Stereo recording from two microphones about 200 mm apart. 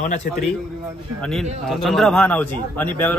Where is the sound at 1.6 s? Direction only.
Centre (ahead or behind).